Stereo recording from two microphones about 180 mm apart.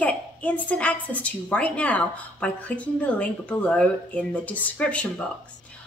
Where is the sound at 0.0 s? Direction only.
10° left (ahead or behind).